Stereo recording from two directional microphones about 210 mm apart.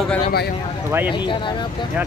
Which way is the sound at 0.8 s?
10° right (ahead or behind).